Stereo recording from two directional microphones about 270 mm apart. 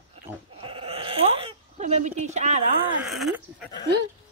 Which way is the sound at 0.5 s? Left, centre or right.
Right.